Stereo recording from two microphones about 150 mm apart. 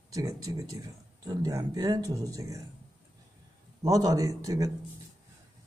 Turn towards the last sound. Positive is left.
turn(degrees=-20)  # may be behind; listen again after turning